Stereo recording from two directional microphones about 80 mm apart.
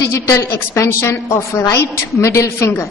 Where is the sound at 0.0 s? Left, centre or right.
Left.